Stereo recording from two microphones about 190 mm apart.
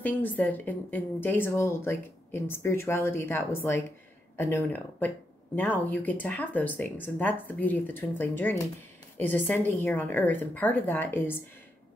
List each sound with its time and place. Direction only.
0.0 s speech: 10° left (ahead or behind)